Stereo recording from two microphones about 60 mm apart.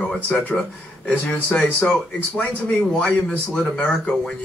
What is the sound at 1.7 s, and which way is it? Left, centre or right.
Speech, centre.